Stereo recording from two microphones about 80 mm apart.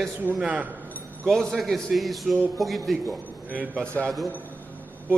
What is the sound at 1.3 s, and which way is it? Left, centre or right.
A man's voice, centre.